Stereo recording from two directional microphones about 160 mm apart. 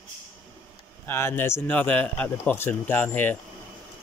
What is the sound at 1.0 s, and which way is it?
Speech, 15° left (ahead or behind).